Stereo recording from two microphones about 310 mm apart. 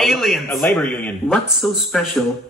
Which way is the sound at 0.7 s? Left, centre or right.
Centre.